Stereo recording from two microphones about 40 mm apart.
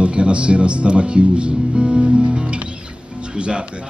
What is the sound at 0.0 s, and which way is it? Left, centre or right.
Speech, right.